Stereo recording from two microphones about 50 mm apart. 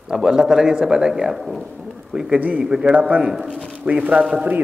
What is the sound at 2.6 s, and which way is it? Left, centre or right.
Speech, centre.